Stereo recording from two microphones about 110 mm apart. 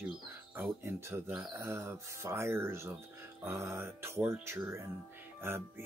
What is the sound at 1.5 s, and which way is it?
Speech, 25° right (ahead or behind).